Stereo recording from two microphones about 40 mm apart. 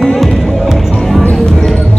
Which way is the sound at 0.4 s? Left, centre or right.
Centre.